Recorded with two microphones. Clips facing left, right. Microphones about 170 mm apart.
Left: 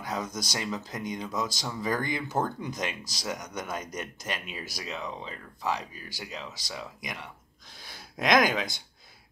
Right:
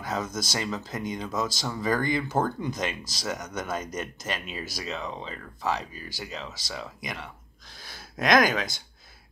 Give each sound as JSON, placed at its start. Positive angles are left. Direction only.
{"t": 0.0, "sound": "speech", "side_deg": 15}
{"t": 7.7, "sound": "gasp", "side_deg": 15}
{"t": 8.5, "sound": "speech", "side_deg": 20}